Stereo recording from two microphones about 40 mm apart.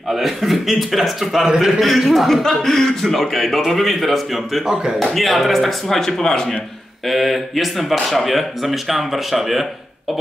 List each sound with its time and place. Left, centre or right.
0.1 s speech: centre
2.6 s speech: centre
7.1 s speech: centre